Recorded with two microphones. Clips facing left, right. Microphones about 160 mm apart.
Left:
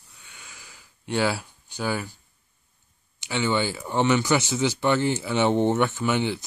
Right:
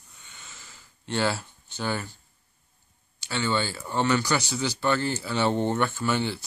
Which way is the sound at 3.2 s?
15° left (ahead or behind).